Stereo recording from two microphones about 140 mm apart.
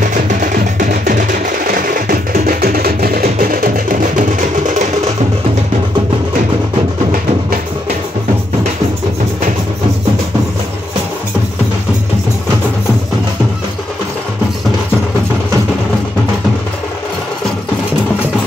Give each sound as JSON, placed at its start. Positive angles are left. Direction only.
{"t": 0.0, "sound": "music", "side_deg": -65}